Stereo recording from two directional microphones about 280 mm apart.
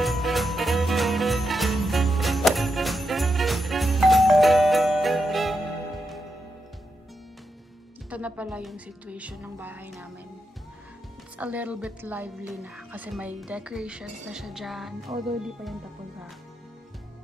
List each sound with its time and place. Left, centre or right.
0.0 s jingle bell: centre
8.1 s a woman's voice: centre
11.3 s a woman's voice: centre